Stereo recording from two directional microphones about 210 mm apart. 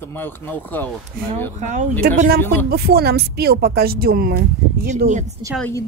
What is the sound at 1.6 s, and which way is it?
Speech, 35° right (ahead or behind).